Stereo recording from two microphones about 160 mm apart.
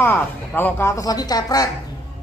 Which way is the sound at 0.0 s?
10° left (ahead or behind).